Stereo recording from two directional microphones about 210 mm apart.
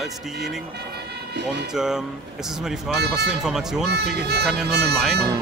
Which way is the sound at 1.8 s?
Centre (ahead or behind).